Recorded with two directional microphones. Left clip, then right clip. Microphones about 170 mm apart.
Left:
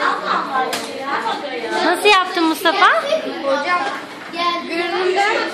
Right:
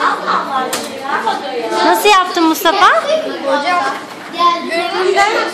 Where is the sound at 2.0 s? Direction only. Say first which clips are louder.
Right 4 dB; 5° right (ahead or behind).